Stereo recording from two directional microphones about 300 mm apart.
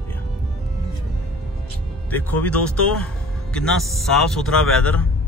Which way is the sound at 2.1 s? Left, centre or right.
Centre.